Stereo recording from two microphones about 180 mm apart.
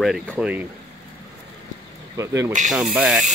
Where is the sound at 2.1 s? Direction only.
15° right (ahead or behind).